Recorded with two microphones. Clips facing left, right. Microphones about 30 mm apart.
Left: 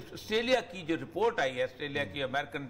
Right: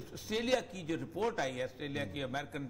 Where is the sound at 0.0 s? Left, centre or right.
Left.